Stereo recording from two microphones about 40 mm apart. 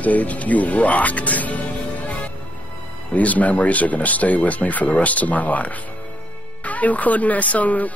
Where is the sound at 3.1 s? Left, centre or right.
Left.